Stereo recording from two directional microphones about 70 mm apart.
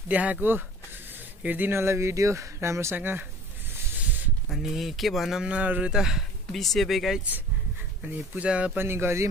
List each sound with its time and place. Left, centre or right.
0.1 s speech: right
4.5 s speech: centre
5.4 s speech: centre
6.5 s speech: centre
8.0 s speech: centre
8.7 s speech: right